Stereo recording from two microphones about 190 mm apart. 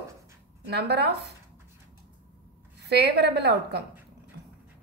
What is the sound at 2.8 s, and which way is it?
Speech, 60° right (ahead or behind).